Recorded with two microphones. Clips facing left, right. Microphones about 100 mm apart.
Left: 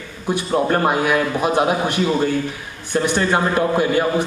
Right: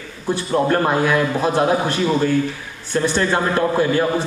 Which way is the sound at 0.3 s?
15° left (ahead or behind).